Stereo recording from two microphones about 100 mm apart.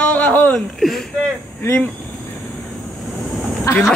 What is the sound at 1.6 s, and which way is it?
Speech, 25° left (ahead or behind).